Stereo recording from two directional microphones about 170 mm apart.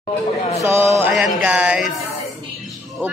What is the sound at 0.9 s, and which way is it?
Mantra, 5° right (ahead or behind).